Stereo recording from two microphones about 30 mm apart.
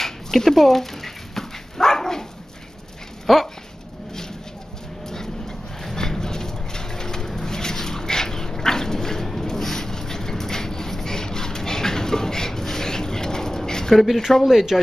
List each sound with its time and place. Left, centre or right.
0.0 s dog: centre
3.3 s speech: centre
5.0 s dog: centre
5.9 s pigeon: centre
13.9 s speech: centre